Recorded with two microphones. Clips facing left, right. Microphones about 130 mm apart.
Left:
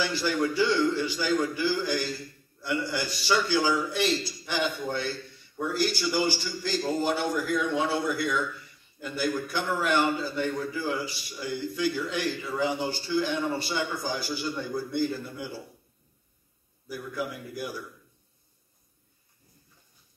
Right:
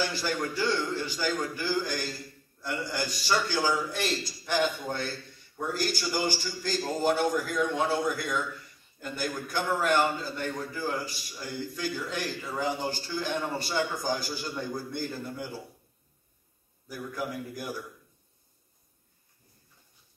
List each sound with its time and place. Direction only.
0.0 s a man's voice: 45° right (ahead or behind)
16.9 s a man's voice: 45° right (ahead or behind)